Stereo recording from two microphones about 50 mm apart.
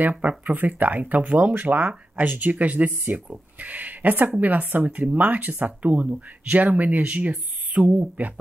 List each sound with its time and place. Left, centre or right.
0.2 s speech: right